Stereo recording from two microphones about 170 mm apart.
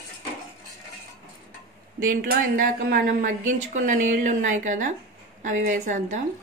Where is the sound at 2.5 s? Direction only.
50° right (ahead or behind).